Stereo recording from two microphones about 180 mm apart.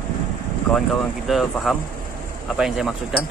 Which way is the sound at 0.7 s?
Centre (ahead or behind).